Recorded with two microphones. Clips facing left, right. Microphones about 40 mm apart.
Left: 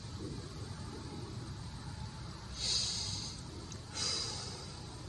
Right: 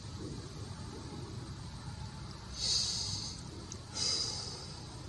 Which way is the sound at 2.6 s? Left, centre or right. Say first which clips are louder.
Right 1 dB; left.